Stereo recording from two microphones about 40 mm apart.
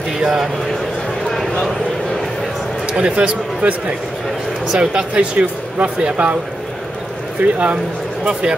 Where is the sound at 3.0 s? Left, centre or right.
Right.